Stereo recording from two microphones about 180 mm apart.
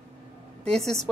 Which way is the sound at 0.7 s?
Centre (ahead or behind).